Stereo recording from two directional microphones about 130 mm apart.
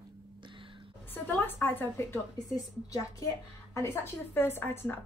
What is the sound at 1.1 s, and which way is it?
Speech, 15° left (ahead or behind).